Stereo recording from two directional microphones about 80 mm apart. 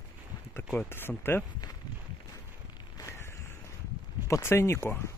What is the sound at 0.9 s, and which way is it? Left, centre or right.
Speech, left.